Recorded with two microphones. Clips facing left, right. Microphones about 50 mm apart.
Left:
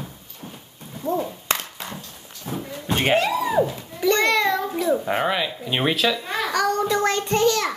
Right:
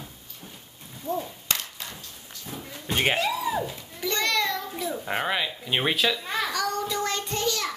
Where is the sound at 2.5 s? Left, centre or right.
Left.